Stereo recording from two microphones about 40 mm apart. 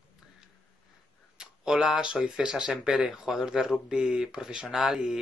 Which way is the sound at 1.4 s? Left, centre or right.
Centre.